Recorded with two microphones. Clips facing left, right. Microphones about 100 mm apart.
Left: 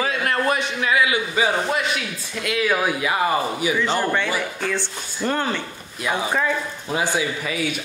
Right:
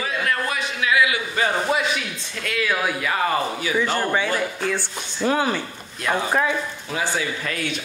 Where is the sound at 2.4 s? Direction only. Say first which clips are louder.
Left 2 dB; 15° left (ahead or behind).